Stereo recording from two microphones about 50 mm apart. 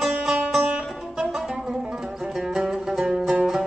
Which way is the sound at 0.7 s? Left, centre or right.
Centre.